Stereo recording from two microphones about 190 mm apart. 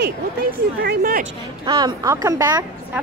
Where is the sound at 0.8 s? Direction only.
50° right (ahead or behind).